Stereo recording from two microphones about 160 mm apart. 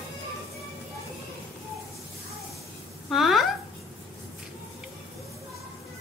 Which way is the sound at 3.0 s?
Centre (ahead or behind).